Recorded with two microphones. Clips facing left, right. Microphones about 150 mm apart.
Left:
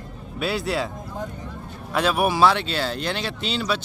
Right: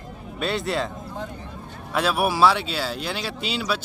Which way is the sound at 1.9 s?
5° right (ahead or behind).